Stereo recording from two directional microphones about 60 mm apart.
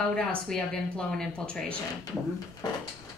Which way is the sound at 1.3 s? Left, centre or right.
Centre.